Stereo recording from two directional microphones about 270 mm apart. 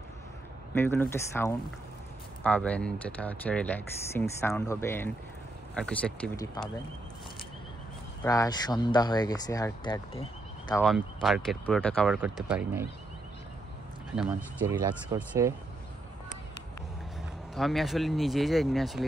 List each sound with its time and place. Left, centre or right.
0.7 s speech: centre
8.2 s speech: centre
10.7 s speech: centre
14.1 s speech: centre
17.6 s speech: centre